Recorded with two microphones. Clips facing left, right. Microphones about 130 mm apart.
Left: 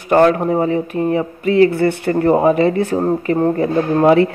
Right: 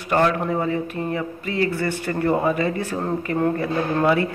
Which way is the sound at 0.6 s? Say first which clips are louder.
Left 7 dB; 25° left (ahead or behind).